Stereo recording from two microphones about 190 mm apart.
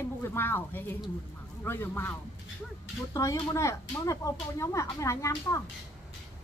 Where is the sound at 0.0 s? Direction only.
10° left (ahead or behind).